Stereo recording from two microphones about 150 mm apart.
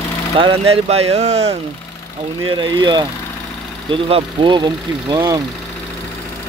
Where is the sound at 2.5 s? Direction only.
30° right (ahead or behind).